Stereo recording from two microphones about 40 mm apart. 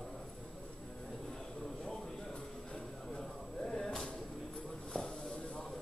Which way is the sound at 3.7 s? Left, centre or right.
Centre.